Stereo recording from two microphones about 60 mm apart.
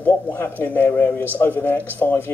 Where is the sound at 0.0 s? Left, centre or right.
Left.